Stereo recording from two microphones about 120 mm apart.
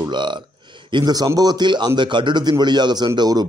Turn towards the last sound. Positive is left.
turn(degrees=-35)  # may be behind; listen again after turning